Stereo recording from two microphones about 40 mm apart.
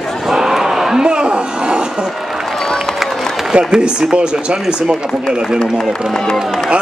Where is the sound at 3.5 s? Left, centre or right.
Right.